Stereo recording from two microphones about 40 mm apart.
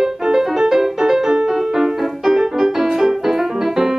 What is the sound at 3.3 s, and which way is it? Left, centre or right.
Keyboard, centre.